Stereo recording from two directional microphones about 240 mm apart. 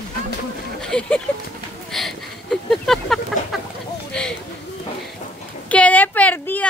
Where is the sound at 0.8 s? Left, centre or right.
Centre.